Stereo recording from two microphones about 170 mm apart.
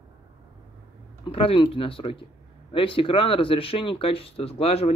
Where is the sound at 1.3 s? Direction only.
30° left (ahead or behind).